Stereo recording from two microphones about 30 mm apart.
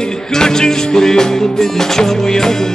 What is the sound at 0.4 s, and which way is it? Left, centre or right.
Music, centre.